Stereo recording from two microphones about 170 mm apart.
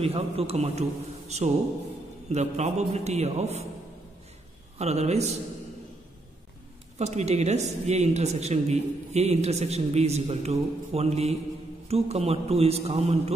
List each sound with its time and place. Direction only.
0.0 s speech: 35° right (ahead or behind)
2.2 s speech: 40° right (ahead or behind)
4.7 s speech: 40° right (ahead or behind)
7.0 s speech: 40° right (ahead or behind)